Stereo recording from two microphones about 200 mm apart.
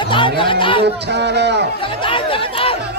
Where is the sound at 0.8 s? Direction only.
60° right (ahead or behind).